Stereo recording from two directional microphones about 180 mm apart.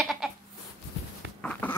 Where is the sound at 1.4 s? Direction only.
10° left (ahead or behind).